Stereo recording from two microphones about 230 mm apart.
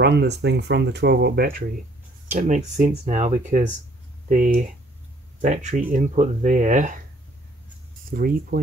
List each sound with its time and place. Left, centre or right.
0.0 s speech: right
8.1 s speech: right